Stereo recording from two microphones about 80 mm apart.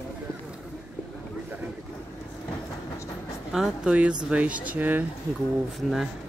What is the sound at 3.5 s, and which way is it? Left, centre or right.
A man's voice, centre.